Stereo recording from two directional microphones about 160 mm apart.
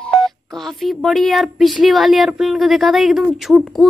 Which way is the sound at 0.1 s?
Centre (ahead or behind).